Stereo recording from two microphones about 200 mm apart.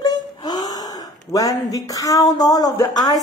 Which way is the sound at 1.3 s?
15° left (ahead or behind).